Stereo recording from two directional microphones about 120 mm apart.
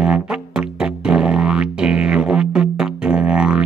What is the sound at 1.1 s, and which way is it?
Music, 5° right (ahead or behind).